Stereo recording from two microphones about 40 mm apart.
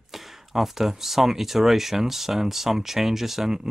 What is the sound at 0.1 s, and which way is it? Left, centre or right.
Speech, centre.